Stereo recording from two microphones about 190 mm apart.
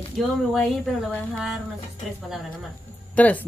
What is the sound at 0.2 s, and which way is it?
Speech, centre (ahead or behind).